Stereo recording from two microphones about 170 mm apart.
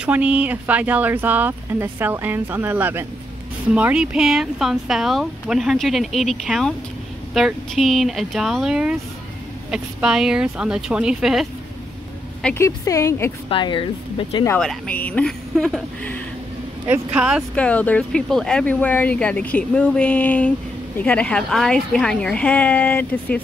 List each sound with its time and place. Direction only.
0.0 s speech: 5° right (ahead or behind)
12.4 s speech: 15° left (ahead or behind)
13.5 s speech: 30° left (ahead or behind)
14.6 s speech: 5° left (ahead or behind)
16.9 s speech: 5° right (ahead or behind)
17.6 s speech: 10° left (ahead or behind)